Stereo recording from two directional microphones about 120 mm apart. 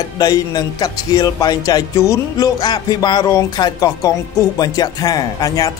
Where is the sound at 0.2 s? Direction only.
30° left (ahead or behind).